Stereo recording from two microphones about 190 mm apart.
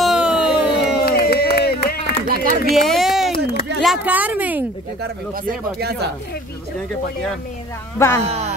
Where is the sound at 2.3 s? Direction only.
50° right (ahead or behind).